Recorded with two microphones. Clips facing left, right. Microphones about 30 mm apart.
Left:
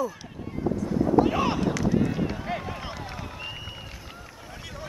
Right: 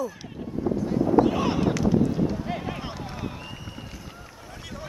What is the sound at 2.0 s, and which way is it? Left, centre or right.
Run, left.